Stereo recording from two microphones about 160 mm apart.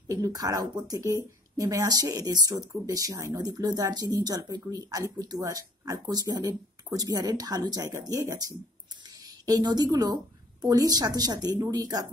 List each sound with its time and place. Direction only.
0.1 s a woman's voice: 20° right (ahead or behind)